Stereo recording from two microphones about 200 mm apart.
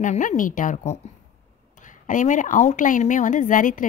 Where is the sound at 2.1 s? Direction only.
40° left (ahead or behind).